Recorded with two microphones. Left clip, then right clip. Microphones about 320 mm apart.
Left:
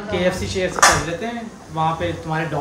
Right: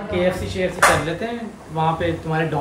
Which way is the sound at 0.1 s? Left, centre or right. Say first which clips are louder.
Left 1 dB; left.